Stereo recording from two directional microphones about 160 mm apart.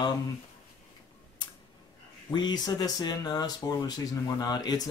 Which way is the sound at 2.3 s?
25° left (ahead or behind).